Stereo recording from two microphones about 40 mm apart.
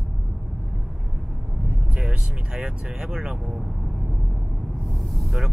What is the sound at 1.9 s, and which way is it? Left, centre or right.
Speech, right.